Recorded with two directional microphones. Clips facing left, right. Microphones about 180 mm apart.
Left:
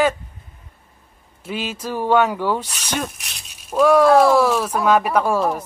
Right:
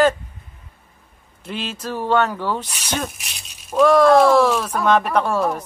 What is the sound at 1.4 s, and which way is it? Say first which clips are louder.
Speech: left 2 dB; 5° left (ahead or behind).